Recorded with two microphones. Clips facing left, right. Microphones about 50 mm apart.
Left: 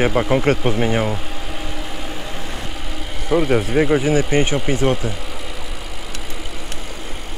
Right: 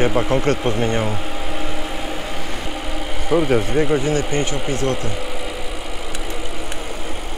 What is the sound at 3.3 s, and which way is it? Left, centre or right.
Speech, centre.